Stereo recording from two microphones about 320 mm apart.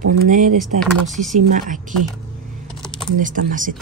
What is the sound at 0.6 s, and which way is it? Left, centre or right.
Speech, centre.